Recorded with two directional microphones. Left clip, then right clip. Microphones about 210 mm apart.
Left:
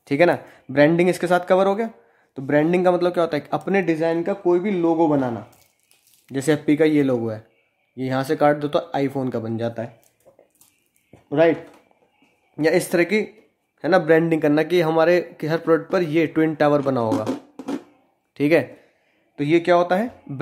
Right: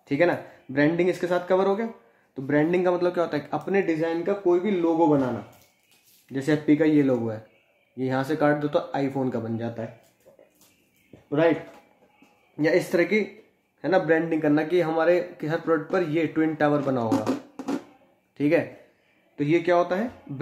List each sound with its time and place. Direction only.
0.0 s a man's voice: 50° left (ahead or behind)
6.2 s a man's voice: 50° left (ahead or behind)
11.2 s speech: 50° left (ahead or behind)
12.5 s a man's voice: 45° left (ahead or behind)
17.3 s didgeridoo: 15° left (ahead or behind)
18.3 s a man's voice: 45° left (ahead or behind)